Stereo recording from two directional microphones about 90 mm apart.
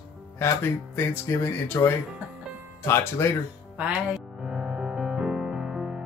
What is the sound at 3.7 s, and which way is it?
Speech, 15° right (ahead or behind).